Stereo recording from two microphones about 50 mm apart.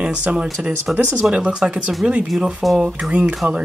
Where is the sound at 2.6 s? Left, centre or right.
Centre.